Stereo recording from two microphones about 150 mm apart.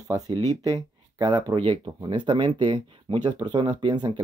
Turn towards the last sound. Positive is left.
turn(degrees=-30)  # may be behind; listen again after turning